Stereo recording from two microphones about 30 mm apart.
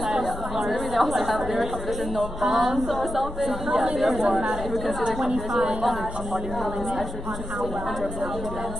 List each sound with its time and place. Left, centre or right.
0.7 s a woman's voice: centre
2.4 s music: centre
2.9 s a woman's voice: centre
4.3 s music: centre